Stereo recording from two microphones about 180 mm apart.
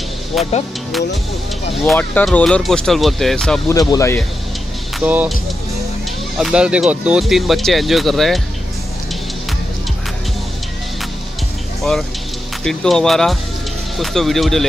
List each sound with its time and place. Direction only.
0.3 s speech: centre (ahead or behind)
1.7 s speech: 5° left (ahead or behind)
3.6 s speech: 20° left (ahead or behind)
5.0 s speech: 10° right (ahead or behind)
12.6 s speech: centre (ahead or behind)